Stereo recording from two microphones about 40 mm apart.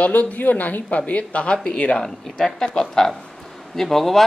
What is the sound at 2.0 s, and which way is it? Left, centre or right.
A man's voice, centre.